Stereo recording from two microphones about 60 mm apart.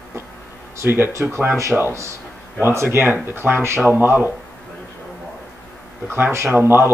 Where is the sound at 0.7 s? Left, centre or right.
Right.